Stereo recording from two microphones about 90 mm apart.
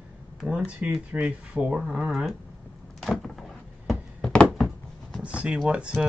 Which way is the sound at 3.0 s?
5° left (ahead or behind).